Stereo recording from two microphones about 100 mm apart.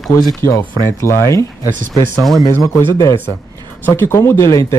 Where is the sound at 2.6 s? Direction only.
25° left (ahead or behind).